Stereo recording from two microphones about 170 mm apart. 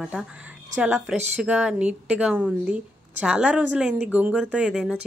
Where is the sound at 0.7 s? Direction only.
5° right (ahead or behind).